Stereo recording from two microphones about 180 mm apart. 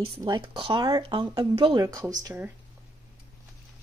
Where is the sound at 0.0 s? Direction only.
25° right (ahead or behind); by 2.5 s 10° right (ahead or behind).